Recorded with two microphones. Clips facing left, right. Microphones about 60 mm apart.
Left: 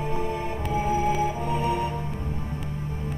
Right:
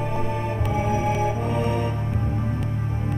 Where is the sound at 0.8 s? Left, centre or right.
Right.